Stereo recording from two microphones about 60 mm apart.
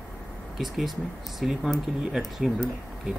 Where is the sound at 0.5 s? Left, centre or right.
Centre.